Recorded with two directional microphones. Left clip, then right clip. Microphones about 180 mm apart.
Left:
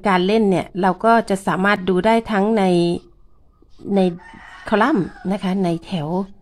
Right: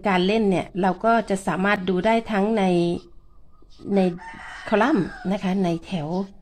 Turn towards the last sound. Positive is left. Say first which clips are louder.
# left 4 dB
turn(degrees=15)  # may be behind; listen again after turning